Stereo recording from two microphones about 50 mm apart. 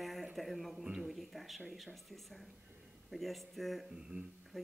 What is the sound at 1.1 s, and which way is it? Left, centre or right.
A woman's voice, centre.